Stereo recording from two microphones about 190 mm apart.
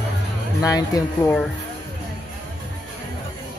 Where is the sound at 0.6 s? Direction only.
20° left (ahead or behind).